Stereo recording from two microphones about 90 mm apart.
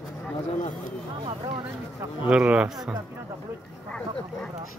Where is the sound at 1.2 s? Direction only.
60° right (ahead or behind).